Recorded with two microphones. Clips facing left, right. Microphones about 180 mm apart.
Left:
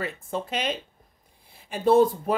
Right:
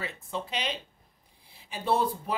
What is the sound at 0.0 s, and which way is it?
Speech, 50° left (ahead or behind).